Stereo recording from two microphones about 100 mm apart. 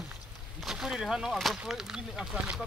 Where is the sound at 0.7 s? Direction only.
5° right (ahead or behind).